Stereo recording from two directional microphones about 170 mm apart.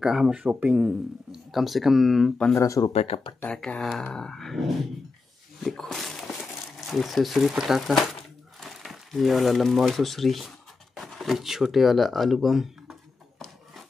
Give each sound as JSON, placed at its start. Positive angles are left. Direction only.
{"t": 0.0, "sound": "a man's voice", "side_deg": -5}
{"t": 2.6, "sound": "speech", "side_deg": 20}
{"t": 2.9, "sound": "speech", "side_deg": 35}
{"t": 3.3, "sound": "a man's voice", "side_deg": 5}